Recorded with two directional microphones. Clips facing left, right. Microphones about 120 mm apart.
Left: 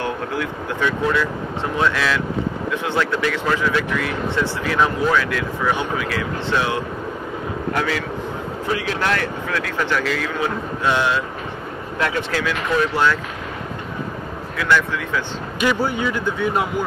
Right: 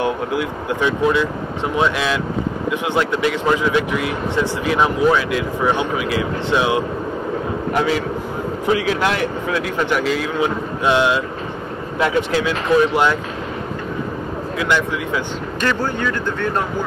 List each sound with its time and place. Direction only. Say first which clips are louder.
0.0 s a man's voice: right 4 dB; 15° right (ahead or behind)
14.6 s speech: even; 20° right (ahead or behind)
15.6 s speech: left 1 dB; 10° left (ahead or behind)